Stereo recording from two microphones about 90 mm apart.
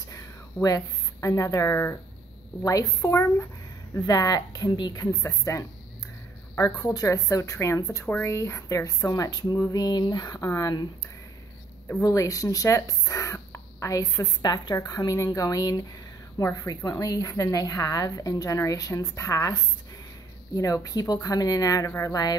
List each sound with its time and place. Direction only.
0.1 s a sound: 35° left (ahead or behind)
2.6 s a woman's voice: 40° left (ahead or behind)
8.0 s speech: 20° left (ahead or behind)
8.3 s a woman's voice: 30° left (ahead or behind)
12.0 s speech: 40° left (ahead or behind)